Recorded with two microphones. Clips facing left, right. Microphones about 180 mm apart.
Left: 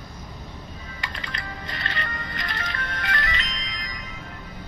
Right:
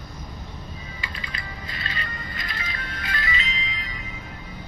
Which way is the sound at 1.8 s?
65° left (ahead or behind).